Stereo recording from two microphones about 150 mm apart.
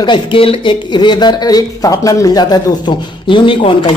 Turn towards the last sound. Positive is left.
turn(degrees=35)  # may be behind; listen again after turning